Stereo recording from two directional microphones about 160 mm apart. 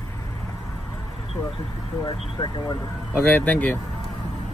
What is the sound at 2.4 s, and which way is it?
Speech, 25° left (ahead or behind).